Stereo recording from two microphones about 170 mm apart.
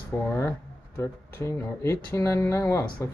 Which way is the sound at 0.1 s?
10° left (ahead or behind).